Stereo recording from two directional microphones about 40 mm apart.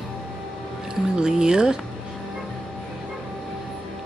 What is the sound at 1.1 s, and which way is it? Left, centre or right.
Music, centre.